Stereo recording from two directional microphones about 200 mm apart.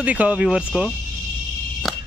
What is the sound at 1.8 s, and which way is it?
Fire alarm, centre (ahead or behind).